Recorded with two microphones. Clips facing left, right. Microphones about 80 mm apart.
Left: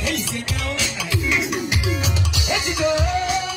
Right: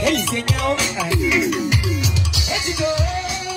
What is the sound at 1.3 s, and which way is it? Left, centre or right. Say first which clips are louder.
Music: right 2 dB; centre.